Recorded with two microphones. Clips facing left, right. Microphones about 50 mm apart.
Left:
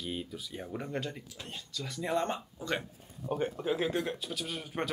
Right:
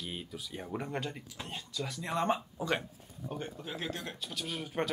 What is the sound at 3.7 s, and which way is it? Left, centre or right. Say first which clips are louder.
Speech: left 6 dB; centre.